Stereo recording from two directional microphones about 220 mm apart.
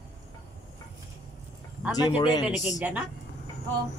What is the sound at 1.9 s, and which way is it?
Speech, 20° left (ahead or behind).